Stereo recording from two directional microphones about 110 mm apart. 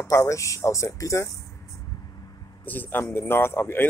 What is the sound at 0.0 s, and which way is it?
Speech, 25° left (ahead or behind).